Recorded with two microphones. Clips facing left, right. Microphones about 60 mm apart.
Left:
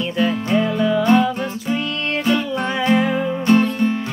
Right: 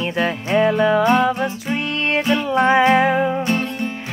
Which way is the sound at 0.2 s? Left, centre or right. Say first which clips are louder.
Right 1 dB; right.